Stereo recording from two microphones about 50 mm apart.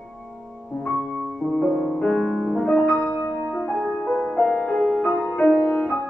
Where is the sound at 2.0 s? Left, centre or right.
Centre.